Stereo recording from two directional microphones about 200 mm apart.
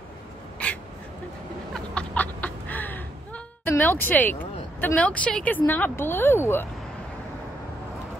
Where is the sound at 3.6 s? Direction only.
10° left (ahead or behind).